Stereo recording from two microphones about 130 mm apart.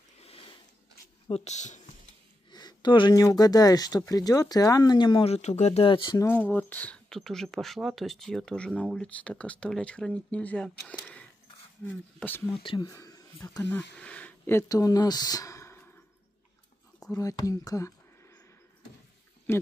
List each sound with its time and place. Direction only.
1.3 s speech: 60° left (ahead or behind)
2.5 s speech: 35° left (ahead or behind)
5.2 s speech: 55° left (ahead or behind)
6.1 s speech: 15° left (ahead or behind)
12.5 s speech: 40° left (ahead or behind)
12.8 s speech: 25° left (ahead or behind)
13.7 s speech: 10° left (ahead or behind)
17.1 s speech: 25° left (ahead or behind)
19.5 s speech: 20° left (ahead or behind)